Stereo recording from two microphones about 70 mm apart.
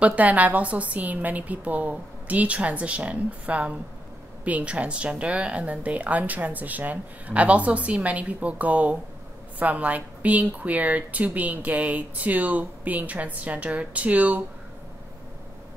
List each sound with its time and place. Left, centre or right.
0.0 s a woman's voice: right